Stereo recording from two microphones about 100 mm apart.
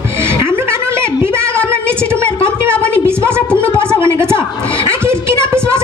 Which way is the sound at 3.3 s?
25° right (ahead or behind).